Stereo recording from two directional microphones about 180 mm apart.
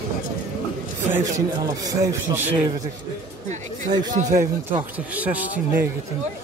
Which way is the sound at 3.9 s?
45° right (ahead or behind).